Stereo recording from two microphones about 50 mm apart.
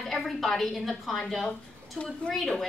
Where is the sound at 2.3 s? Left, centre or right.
Centre.